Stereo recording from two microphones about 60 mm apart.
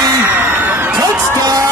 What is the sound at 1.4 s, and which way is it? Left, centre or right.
Music, right.